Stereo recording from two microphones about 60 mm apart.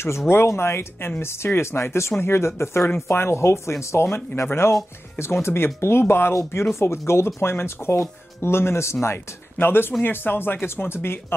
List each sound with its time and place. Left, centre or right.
0.3 s speech: left